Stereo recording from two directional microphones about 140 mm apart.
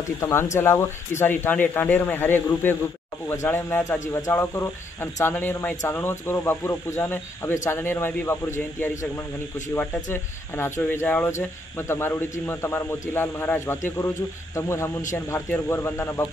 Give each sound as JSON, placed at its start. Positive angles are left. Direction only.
{"t": 0.2, "sound": "speech", "side_deg": 20}
{"t": 10.1, "sound": "speech", "side_deg": 15}